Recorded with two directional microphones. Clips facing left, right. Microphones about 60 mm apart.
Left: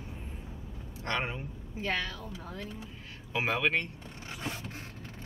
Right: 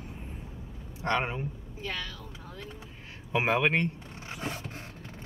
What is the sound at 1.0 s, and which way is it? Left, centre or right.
Speech, centre.